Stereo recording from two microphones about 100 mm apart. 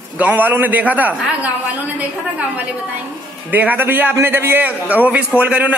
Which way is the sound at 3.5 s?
15° right (ahead or behind).